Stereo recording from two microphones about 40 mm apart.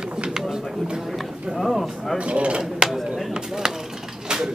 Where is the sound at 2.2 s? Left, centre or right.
Right.